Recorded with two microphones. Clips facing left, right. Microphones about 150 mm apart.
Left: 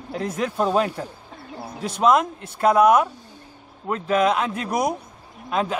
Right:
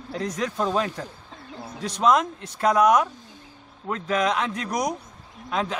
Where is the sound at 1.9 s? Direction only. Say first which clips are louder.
Left 2 dB; 5° left (ahead or behind).